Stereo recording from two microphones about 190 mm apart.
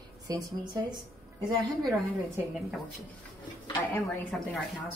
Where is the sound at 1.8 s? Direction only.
15° right (ahead or behind).